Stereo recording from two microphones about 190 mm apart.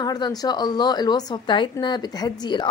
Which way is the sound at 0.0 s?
20° left (ahead or behind).